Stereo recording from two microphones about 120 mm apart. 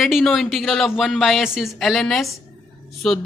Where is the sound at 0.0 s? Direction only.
Centre (ahead or behind).